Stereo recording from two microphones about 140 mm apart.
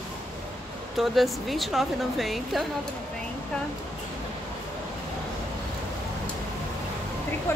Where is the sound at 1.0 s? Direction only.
Centre (ahead or behind).